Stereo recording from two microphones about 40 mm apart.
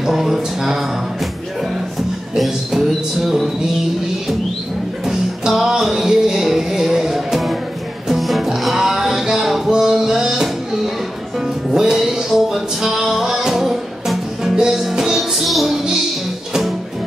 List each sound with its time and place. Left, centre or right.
0.0 s a sound: centre
2.3 s music: centre
5.0 s music: centre
15.4 s music: centre
15.7 s music: centre